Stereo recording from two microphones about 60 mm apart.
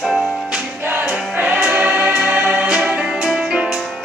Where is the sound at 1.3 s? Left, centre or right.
Right.